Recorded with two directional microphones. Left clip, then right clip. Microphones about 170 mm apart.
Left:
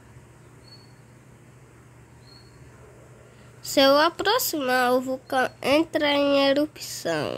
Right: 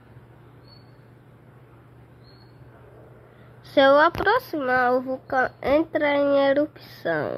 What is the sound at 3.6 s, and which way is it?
Speech, 25° left (ahead or behind).